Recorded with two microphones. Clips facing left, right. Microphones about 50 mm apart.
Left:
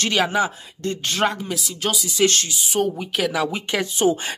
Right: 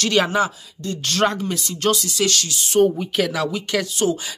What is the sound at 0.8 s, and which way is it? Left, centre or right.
Speech, left.